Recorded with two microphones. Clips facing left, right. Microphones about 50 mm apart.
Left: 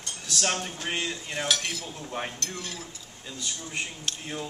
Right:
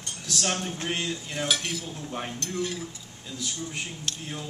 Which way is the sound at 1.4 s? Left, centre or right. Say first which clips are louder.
Even; centre.